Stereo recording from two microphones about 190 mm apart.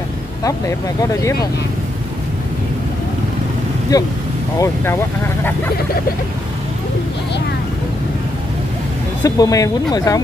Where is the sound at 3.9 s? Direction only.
20° left (ahead or behind).